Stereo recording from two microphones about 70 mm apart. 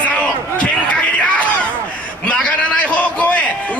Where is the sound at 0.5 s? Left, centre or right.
Centre.